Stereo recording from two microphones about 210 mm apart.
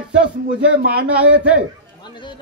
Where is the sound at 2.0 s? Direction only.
20° left (ahead or behind).